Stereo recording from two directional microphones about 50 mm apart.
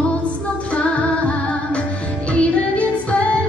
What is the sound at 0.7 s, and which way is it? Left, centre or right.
Music, left.